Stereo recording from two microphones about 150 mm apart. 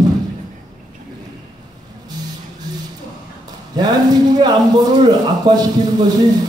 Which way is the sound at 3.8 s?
30° right (ahead or behind).